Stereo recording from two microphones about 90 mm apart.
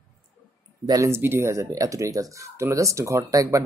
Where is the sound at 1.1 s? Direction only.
25° right (ahead or behind).